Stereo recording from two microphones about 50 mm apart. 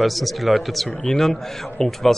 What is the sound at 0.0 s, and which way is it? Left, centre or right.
A man's voice, centre.